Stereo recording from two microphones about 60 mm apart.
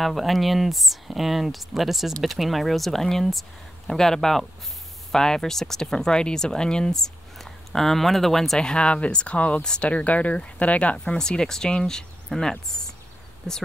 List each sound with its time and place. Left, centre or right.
0.0 s speech: centre; by 11.1 s left
11.1 s speech: centre